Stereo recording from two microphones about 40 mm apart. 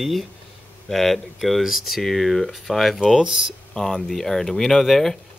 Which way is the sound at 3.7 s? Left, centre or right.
Centre.